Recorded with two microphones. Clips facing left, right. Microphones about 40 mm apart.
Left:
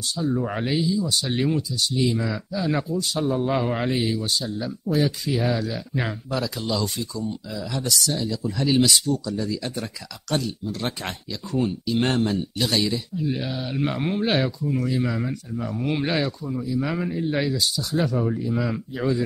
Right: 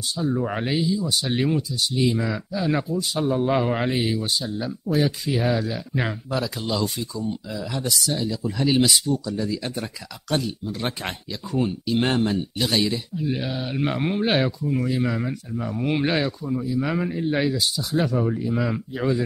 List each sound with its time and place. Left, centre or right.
0.2 s speech: centre